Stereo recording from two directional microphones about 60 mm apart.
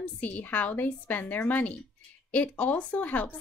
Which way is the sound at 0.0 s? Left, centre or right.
Left.